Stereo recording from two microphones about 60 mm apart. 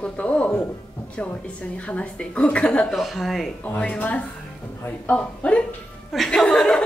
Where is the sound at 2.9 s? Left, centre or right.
Centre.